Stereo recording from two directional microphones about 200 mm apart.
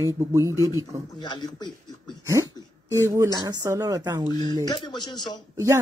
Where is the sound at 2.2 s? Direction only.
15° right (ahead or behind).